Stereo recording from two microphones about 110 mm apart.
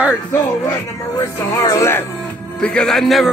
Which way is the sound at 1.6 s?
25° left (ahead or behind).